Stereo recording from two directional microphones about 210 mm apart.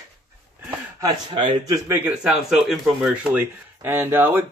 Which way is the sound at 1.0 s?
20° right (ahead or behind).